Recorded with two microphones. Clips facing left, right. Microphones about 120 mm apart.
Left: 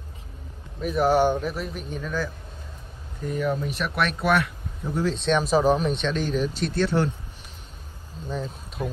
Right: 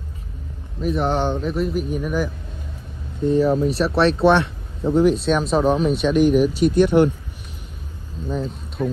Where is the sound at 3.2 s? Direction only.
30° right (ahead or behind).